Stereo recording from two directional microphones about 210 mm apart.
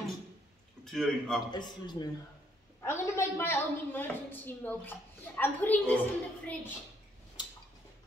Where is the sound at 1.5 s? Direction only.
20° left (ahead or behind).